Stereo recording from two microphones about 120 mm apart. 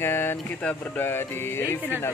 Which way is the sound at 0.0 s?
20° left (ahead or behind).